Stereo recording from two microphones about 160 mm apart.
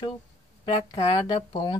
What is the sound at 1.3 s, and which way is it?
Speech, 30° left (ahead or behind).